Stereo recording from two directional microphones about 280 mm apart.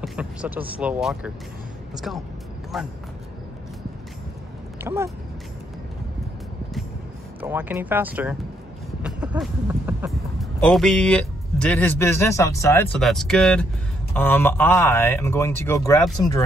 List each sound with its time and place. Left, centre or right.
0.0 s speech: centre
2.7 s a man's voice: centre
4.8 s speech: centre
7.3 s a man's voice: centre